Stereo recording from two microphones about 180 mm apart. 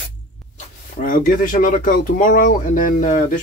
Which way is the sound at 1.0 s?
50° left (ahead or behind).